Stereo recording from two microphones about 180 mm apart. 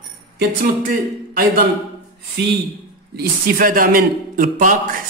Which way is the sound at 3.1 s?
50° right (ahead or behind).